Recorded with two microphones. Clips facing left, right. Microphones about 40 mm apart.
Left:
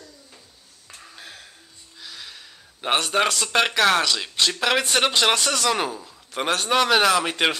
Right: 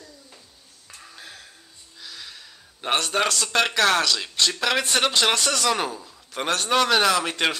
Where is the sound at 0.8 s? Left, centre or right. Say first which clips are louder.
Left 1 dB; centre.